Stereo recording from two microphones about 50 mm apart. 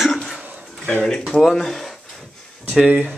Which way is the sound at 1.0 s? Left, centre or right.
Centre.